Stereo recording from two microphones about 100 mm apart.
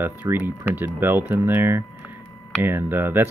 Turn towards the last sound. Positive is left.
turn(degrees=-20)  # may be behind; listen again after turning